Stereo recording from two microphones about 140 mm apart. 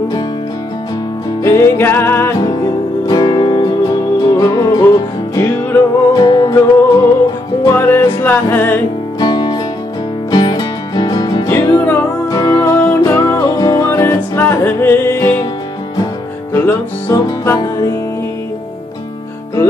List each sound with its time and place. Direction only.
1.4 s music: 20° left (ahead or behind)
6.1 s music: 30° left (ahead or behind)
7.6 s music: 20° left (ahead or behind)
9.2 s music: 30° left (ahead or behind)
11.8 s music: 10° left (ahead or behind)
12.3 s music: 25° left (ahead or behind)
16.5 s music: 20° left (ahead or behind)